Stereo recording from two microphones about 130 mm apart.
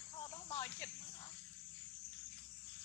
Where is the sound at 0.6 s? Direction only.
20° left (ahead or behind).